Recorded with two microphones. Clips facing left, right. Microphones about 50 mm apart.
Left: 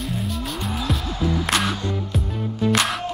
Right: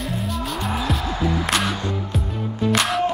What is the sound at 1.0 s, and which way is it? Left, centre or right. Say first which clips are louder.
Music: right 1 dB; right.